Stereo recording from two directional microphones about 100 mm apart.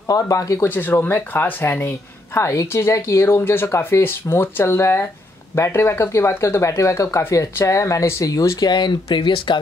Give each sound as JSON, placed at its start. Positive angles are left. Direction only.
{"t": 0.0, "sound": "speech", "side_deg": 35}
{"t": 0.7, "sound": "speech", "side_deg": 20}